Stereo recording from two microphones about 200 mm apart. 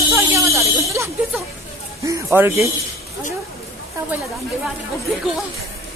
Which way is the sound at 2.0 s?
15° right (ahead or behind).